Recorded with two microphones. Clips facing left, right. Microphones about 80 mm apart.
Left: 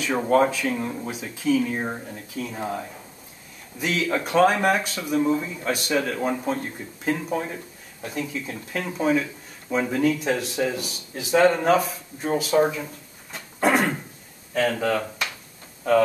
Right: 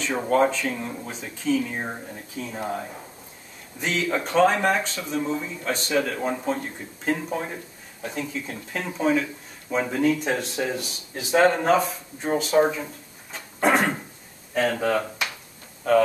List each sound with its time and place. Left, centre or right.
0.2 s speech: centre
3.8 s speech: centre
11.3 s speech: centre
11.6 s speech: centre
13.3 s a sound: centre
14.5 s speech: centre